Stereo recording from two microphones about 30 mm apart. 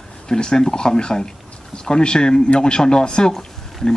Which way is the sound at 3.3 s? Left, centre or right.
Left.